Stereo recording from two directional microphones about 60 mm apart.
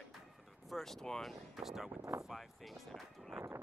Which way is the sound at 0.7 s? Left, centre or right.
Centre.